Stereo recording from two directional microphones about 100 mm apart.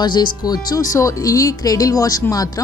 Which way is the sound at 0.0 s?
45° left (ahead or behind).